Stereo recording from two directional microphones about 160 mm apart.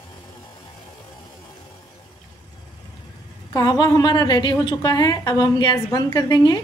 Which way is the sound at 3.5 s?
25° left (ahead or behind).